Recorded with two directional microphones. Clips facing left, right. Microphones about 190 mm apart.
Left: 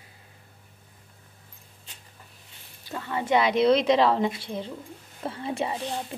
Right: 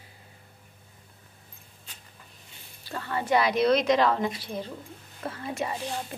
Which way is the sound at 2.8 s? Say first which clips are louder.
Left 1 dB; 15° left (ahead or behind).